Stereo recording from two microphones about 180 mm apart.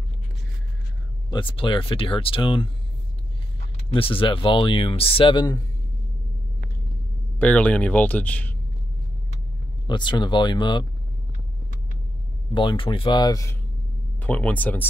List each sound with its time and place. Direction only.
1.3 s speech: 30° left (ahead or behind)
3.9 s speech: 30° left (ahead or behind)
7.3 s speech: 5° left (ahead or behind)
9.8 s speech: 25° left (ahead or behind)
12.5 s speech: 25° left (ahead or behind)
14.2 s speech: 10° left (ahead or behind)